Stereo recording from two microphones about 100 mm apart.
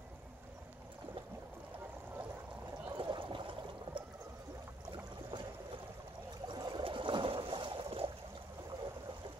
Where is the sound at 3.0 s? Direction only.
55° right (ahead or behind).